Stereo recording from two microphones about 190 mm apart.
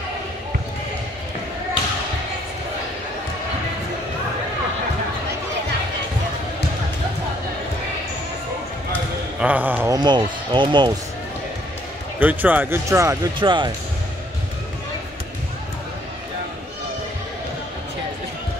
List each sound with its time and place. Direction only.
9.4 s speech: 10° right (ahead or behind)
9.9 s speech: 25° right (ahead or behind)
12.2 s speech: 10° right (ahead or behind); by 13.7 s 25° right (ahead or behind)